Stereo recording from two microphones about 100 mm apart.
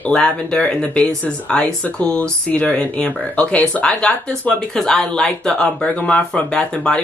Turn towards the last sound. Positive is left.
turn(degrees=10)  # may be behind; listen again after turning